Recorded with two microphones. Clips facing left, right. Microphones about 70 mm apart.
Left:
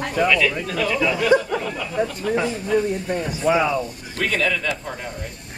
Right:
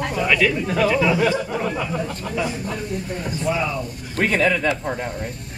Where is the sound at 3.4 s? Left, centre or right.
Left.